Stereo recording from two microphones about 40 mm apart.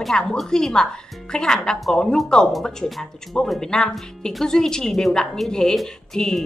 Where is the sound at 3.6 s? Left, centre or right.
Centre.